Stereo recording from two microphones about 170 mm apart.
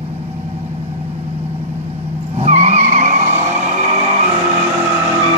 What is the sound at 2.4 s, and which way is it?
Vehicle, 40° right (ahead or behind).